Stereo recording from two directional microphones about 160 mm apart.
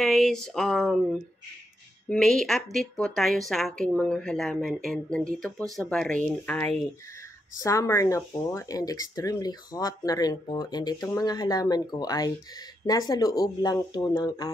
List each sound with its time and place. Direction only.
0.0 s a woman's voice: centre (ahead or behind)
2.0 s a woman's voice: centre (ahead or behind); by 14.5 s 25° left (ahead or behind)